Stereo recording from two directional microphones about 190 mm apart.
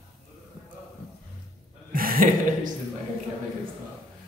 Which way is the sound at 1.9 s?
50° right (ahead or behind).